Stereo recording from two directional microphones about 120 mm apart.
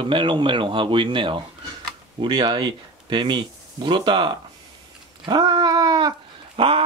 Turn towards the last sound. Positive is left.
turn(degrees=-50)  # may be behind; listen again after turning